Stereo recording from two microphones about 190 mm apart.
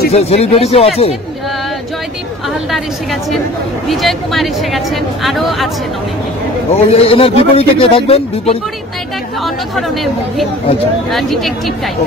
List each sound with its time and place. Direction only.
0.1 s a man's voice: 35° left (ahead or behind)
3.9 s speech: centre (ahead or behind)
6.7 s a man's voice: 30° left (ahead or behind)
9.4 s speech: centre (ahead or behind)